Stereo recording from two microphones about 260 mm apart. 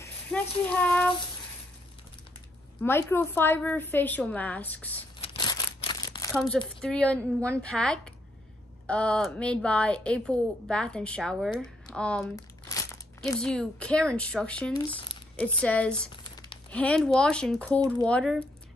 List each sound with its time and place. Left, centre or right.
0.0 s child singing: centre
2.8 s a woman's voice: centre
5.2 s crumpling: centre
6.3 s a woman's voice: centre
13.4 s a woman's voice: centre
14.9 s a sound: centre
15.6 s a woman's voice: centre